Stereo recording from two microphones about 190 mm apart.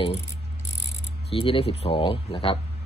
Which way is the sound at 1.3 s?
30° left (ahead or behind).